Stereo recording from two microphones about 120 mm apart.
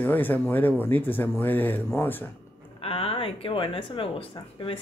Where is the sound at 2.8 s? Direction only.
55° left (ahead or behind).